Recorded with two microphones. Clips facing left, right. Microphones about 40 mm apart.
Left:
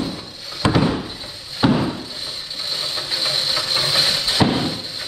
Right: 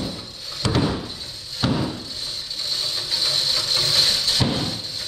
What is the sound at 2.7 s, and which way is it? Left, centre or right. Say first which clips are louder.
Vehicle: left 2 dB; centre.